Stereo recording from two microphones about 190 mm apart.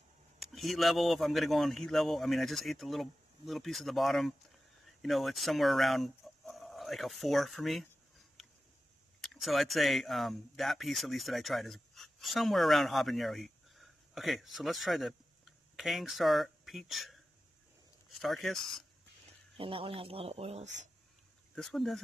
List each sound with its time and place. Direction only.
0.4 s a man's voice: centre (ahead or behind)
9.2 s speech: centre (ahead or behind)
19.5 s speech: 30° right (ahead or behind)
21.5 s a man's voice: centre (ahead or behind)